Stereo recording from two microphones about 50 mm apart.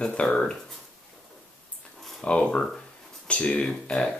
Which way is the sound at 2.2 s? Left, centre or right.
Left.